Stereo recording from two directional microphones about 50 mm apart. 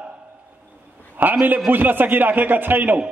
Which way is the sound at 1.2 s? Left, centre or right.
Right.